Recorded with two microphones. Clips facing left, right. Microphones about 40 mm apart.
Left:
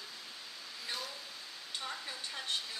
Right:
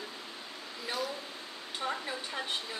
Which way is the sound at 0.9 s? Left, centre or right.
Centre.